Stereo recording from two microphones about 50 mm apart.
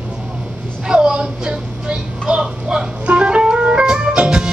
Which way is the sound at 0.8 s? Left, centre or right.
Centre.